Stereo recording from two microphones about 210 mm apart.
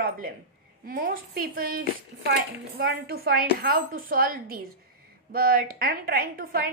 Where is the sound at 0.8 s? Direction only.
45° right (ahead or behind).